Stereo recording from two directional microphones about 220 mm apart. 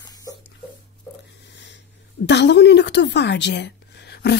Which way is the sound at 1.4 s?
55° left (ahead or behind).